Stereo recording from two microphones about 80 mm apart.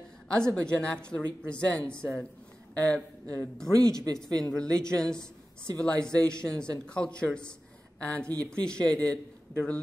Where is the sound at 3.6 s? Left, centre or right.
Right.